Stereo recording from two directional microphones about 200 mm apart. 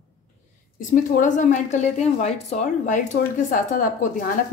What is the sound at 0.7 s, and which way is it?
A woman's voice, 40° left (ahead or behind).